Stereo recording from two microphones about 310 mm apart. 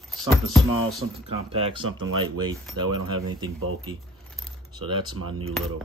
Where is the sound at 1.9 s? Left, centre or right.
Right.